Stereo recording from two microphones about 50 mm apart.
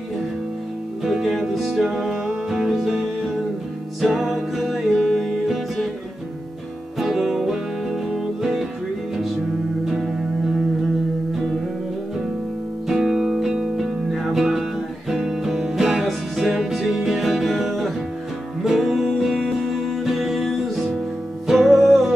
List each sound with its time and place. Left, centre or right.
1.0 s music: centre
7.0 s music: centre
9.8 s music: centre
12.8 s music: centre